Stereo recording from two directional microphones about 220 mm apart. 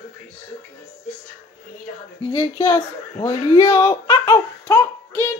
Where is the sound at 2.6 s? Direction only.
15° left (ahead or behind).